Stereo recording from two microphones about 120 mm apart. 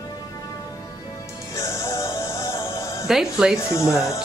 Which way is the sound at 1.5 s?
25° left (ahead or behind).